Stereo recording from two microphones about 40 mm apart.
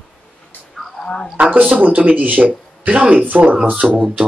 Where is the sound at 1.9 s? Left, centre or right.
Right.